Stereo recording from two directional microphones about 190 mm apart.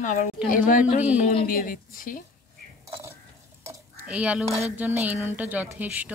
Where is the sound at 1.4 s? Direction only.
45° left (ahead or behind).